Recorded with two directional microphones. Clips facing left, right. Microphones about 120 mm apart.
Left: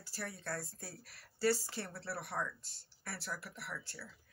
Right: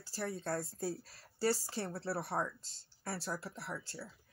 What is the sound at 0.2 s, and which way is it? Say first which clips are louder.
Speech: right 5 dB; 30° right (ahead or behind).